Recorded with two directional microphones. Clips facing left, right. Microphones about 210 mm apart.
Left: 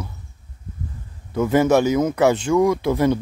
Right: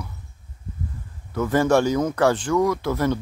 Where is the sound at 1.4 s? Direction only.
20° left (ahead or behind).